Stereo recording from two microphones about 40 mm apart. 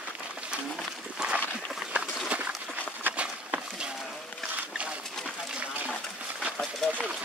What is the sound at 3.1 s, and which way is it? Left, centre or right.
Walk, right.